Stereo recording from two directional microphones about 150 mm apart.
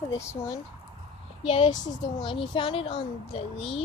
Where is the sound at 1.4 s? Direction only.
35° left (ahead or behind).